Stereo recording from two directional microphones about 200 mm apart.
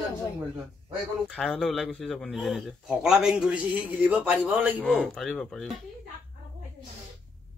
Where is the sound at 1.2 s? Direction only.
Centre (ahead or behind).